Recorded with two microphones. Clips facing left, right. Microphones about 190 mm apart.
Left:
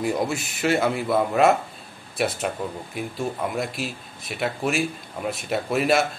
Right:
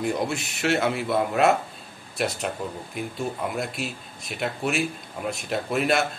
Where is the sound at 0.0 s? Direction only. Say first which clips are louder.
Left 2 dB; centre (ahead or behind).